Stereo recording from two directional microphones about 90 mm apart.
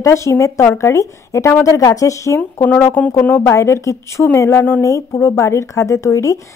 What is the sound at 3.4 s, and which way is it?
A woman's voice, 30° left (ahead or behind).